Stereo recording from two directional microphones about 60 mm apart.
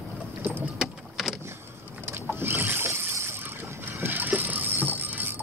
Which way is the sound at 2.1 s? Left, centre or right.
Right.